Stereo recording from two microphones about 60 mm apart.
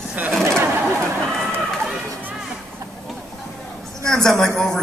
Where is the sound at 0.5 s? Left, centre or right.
Right.